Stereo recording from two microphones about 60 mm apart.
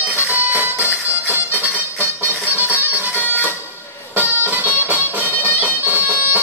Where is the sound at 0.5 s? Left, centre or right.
Right.